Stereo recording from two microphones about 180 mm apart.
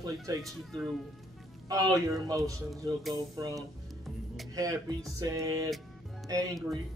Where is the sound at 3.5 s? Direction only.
Centre (ahead or behind).